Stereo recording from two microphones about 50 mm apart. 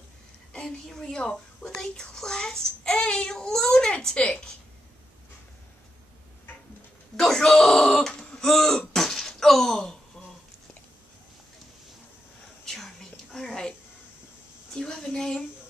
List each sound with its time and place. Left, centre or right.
0.7 s a woman's voice: centre
1.7 s a child's voice: centre
7.2 s throat clearing: centre
12.6 s whispering: centre
13.5 s a sound: centre
15.0 s a sound: centre